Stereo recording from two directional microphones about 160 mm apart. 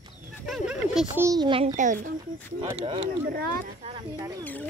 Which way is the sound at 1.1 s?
20° right (ahead or behind).